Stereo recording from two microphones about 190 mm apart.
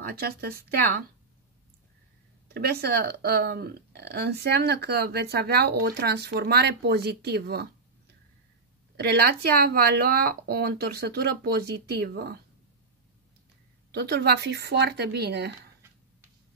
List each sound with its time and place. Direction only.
0.0 s speech: 55° right (ahead or behind)
2.5 s speech: 55° right (ahead or behind)
8.9 s speech: 60° right (ahead or behind)
13.9 s speech: 60° right (ahead or behind)